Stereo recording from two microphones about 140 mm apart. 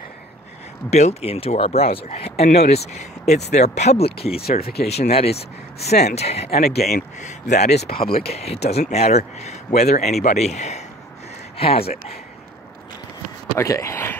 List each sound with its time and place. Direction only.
0.8 s speech: 50° left (ahead or behind)
4.4 s speech: 90° left
4.9 s speech: 50° left (ahead or behind)
6.5 s speech: 90° left; by 11.9 s 45° left (ahead or behind)
13.6 s speech: 20° left (ahead or behind)